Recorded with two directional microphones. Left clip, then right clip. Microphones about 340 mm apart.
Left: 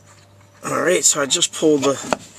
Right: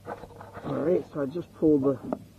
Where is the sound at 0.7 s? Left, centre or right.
Centre.